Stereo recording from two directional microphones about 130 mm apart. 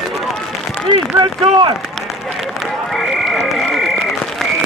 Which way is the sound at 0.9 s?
35° right (ahead or behind).